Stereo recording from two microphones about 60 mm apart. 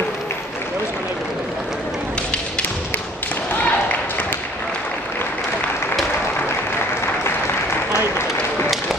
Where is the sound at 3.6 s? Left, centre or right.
Left.